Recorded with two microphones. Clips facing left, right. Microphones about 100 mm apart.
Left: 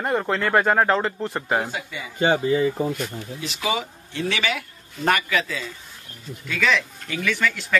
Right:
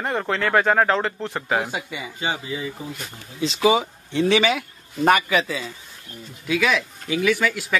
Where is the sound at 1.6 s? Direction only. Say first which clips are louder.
Right 1 dB; 15° right (ahead or behind).